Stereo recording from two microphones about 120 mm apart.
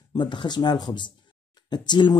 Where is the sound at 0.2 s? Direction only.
40° left (ahead or behind).